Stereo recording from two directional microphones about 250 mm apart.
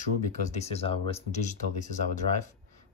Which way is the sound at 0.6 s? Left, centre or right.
Left.